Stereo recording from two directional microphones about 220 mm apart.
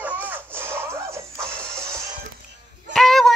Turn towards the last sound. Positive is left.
turn(degrees=0)  # may be behind; listen again after turning